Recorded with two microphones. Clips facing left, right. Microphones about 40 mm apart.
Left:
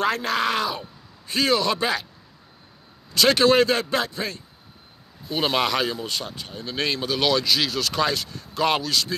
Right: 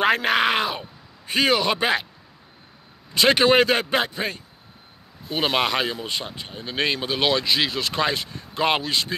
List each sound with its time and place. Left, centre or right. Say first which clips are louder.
0.0 s speech: right 3 dB; right
3.2 s speech: right 1 dB; right
5.3 s speech: even; right